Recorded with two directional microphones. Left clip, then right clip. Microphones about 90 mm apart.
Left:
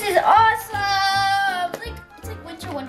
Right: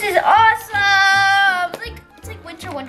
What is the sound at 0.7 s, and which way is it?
Music, 10° right (ahead or behind).